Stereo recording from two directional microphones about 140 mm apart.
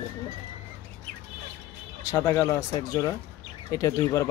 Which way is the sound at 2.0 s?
20° left (ahead or behind).